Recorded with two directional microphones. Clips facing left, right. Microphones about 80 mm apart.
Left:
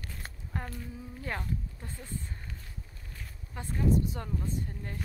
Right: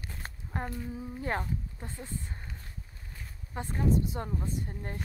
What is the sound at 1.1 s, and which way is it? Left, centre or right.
Speech, right.